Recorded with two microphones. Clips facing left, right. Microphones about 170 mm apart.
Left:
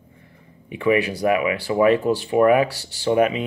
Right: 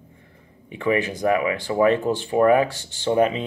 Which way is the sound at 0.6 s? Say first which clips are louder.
Left 3 dB; 10° left (ahead or behind).